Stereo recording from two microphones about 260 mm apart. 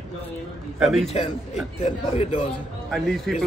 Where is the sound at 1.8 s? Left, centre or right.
Left.